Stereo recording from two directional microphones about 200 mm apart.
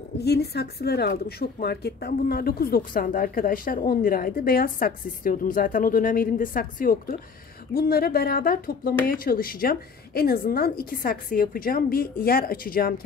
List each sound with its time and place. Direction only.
0.2 s speech: 55° left (ahead or behind)